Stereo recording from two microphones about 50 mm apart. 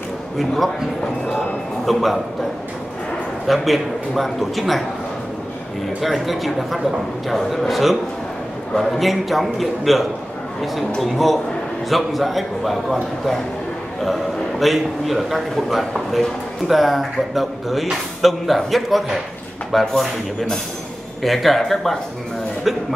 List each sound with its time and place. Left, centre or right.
0.4 s a man's voice: centre
3.4 s a man's voice: centre
5.9 s a man's voice: centre